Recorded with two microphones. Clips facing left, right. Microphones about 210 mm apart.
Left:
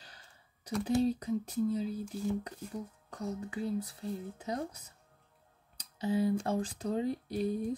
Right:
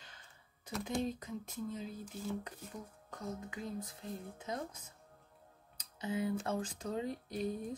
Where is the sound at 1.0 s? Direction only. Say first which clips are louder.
Left 9 dB; 35° left (ahead or behind).